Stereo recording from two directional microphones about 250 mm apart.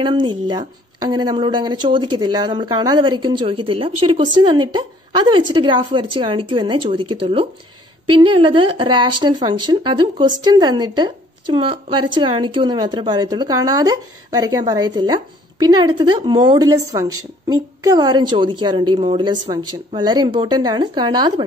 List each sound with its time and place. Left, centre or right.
0.0 s a woman's voice: centre